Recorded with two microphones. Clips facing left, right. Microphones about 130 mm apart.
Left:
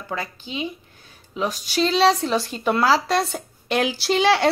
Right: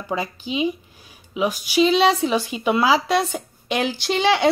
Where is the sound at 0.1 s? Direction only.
15° right (ahead or behind).